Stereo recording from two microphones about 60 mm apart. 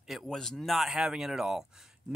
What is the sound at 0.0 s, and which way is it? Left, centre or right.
Speech, centre.